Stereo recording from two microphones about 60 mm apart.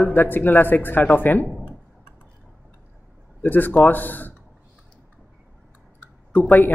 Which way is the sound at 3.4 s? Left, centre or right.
Left.